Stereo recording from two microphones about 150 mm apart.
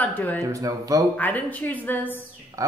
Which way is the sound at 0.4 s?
20° right (ahead or behind).